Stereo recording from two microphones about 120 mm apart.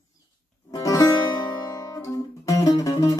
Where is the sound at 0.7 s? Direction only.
30° left (ahead or behind).